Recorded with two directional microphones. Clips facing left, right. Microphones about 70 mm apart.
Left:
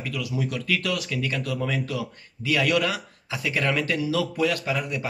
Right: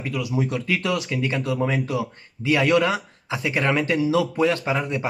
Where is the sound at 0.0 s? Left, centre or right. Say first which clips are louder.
Right 4 dB; right.